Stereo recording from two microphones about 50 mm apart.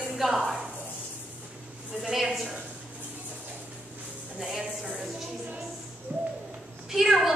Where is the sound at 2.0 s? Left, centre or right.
Centre.